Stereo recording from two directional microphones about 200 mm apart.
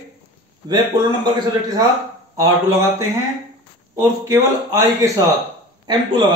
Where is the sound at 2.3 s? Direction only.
15° right (ahead or behind).